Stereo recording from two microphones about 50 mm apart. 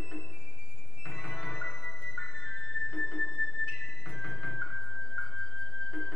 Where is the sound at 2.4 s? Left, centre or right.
Centre.